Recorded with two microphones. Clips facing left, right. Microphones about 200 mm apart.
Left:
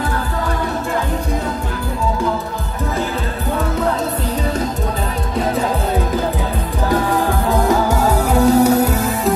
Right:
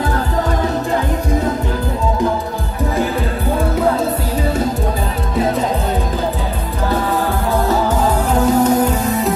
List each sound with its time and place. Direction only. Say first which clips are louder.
8.3 s music: left 2 dB; 10° left (ahead or behind)